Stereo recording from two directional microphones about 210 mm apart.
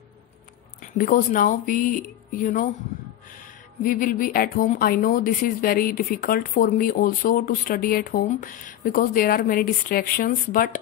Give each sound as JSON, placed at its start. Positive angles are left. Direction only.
{"t": 0.7, "sound": "speech", "side_deg": 40}
{"t": 3.8, "sound": "speech", "side_deg": 40}